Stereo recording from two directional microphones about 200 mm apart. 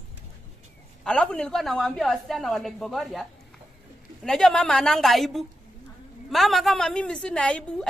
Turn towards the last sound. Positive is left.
turn(degrees=5)  # may be behind; listen again after turning